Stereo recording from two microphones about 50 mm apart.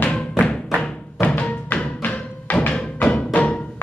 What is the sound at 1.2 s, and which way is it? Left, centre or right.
Music, left.